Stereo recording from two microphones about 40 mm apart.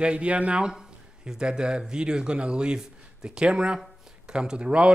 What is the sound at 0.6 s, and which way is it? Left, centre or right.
Speech, centre.